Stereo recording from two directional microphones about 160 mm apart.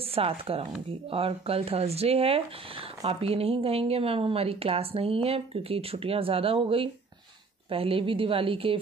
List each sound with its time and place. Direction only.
0.1 s speech: 35° right (ahead or behind)